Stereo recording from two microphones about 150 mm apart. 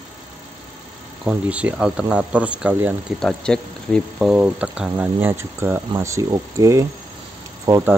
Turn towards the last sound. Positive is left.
turn(degrees=-20)  # may be behind; listen again after turning